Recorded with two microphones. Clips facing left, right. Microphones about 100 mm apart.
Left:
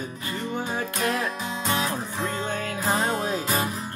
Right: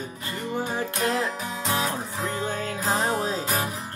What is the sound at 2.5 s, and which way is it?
Music, 30° right (ahead or behind).